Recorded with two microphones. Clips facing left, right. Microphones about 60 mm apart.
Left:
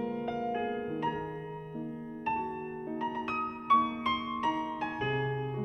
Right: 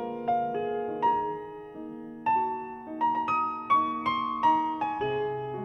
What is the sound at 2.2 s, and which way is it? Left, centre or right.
Music, centre.